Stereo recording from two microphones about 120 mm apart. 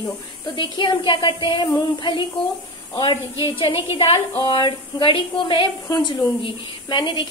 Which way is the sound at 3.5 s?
50° left (ahead or behind).